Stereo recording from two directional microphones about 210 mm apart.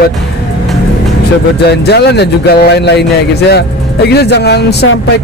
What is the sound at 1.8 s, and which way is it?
A man's voice, 50° left (ahead or behind).